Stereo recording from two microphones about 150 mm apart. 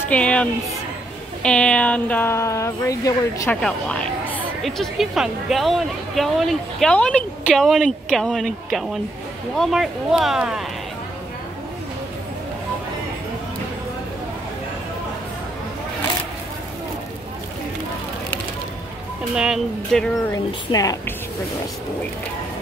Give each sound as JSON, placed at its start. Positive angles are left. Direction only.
{"t": 0.1, "sound": "speech", "side_deg": 10}
{"t": 3.6, "sound": "speech", "side_deg": 5}
{"t": 19.3, "sound": "speech", "side_deg": -5}
{"t": 20.2, "sound": "speech", "side_deg": 25}